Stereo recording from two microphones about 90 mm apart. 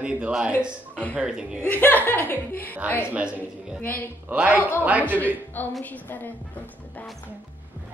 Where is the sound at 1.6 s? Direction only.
20° left (ahead or behind).